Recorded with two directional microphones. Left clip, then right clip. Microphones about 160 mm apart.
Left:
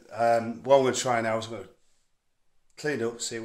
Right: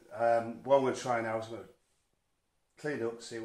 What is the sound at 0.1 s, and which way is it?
A man's voice, 25° left (ahead or behind).